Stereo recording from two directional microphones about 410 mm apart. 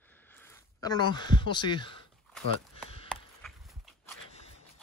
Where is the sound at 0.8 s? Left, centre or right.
Centre.